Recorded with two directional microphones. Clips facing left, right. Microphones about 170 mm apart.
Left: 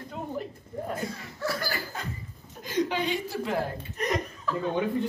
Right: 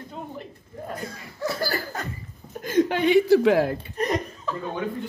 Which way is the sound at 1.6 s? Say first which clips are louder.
Right 6 dB; 40° right (ahead or behind).